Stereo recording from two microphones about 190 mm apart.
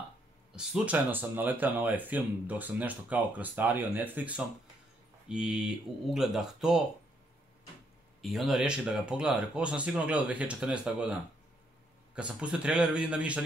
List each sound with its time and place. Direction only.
0.6 s speech: 5° right (ahead or behind)
8.2 s speech: centre (ahead or behind)
12.2 s speech: 5° right (ahead or behind)